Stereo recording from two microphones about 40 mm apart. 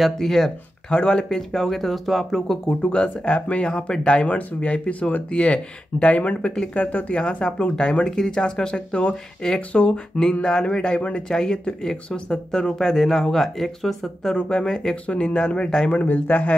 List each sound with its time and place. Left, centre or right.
0.0 s speech: centre
0.8 s speech: left
1.3 s speech: centre
2.8 s speech: left
7.4 s speech: left
10.4 s speech: centre
11.0 s speech: left
11.2 s speech: centre
14.3 s speech: centre
15.0 s speech: left
15.9 s speech: left